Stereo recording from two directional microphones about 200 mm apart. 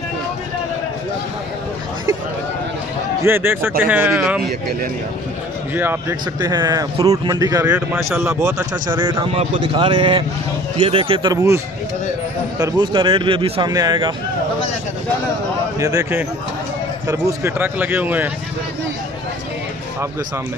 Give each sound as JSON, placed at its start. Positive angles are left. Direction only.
{"t": 3.3, "sound": "speech", "side_deg": -10}
{"t": 5.8, "sound": "speech", "side_deg": -10}
{"t": 8.8, "sound": "speech", "side_deg": -20}
{"t": 12.5, "sound": "speech", "side_deg": -20}
{"t": 15.8, "sound": "speech", "side_deg": -15}